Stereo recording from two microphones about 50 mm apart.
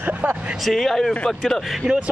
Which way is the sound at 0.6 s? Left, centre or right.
Centre.